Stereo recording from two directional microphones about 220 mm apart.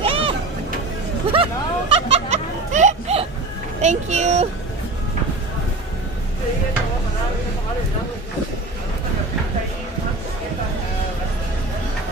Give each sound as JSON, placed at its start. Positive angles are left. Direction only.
{"t": 0.0, "sound": "music", "side_deg": -25}
{"t": 1.3, "sound": "hubbub", "side_deg": -25}
{"t": 3.8, "sound": "a child's voice", "side_deg": -30}